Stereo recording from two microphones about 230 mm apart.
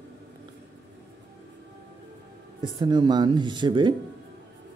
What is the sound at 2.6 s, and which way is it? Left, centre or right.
Speech, centre.